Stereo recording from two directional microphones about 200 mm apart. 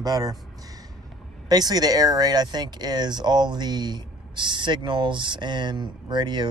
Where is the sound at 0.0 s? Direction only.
20° right (ahead or behind).